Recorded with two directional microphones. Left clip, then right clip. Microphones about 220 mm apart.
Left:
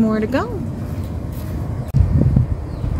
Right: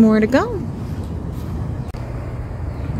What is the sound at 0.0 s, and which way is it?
Speech, 30° right (ahead or behind).